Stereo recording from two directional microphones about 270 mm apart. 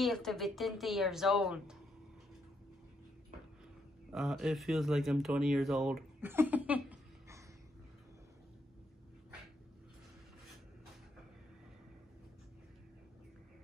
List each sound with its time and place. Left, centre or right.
0.0 s speech: centre
4.1 s speech: centre